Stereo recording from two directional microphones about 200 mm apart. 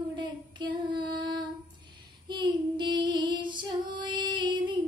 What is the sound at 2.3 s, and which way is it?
Child singing, 25° right (ahead or behind).